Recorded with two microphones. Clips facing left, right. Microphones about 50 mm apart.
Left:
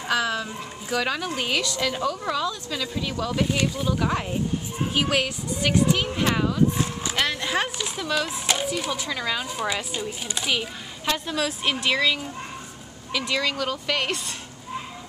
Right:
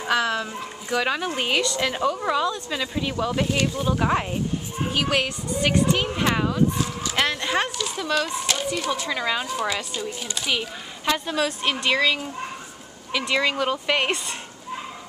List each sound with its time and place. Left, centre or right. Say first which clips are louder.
0.1 s speech: right 2 dB; centre
4.9 s speech: even; centre
6.8 s a sound: even; left
7.3 s speech: right 1 dB; centre
9.1 s speech: right 2 dB; centre
9.6 s a woman's voice: right 1 dB; centre
13.3 s speech: right 4 dB; centre